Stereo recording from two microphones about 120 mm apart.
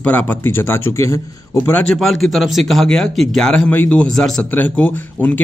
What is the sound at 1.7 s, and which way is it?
Speech, 15° left (ahead or behind).